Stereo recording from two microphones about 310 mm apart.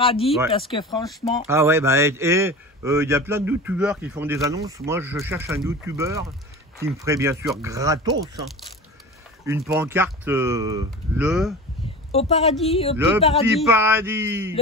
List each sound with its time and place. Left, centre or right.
0.0 s speech: centre
1.0 s speech: centre
12.1 s a woman's voice: centre
13.6 s speech: centre